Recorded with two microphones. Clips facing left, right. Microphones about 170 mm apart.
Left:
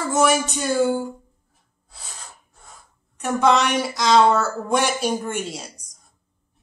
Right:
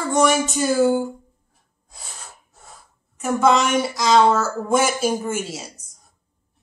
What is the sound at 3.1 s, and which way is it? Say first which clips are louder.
A woman's voice: right 1 dB; centre (ahead or behind).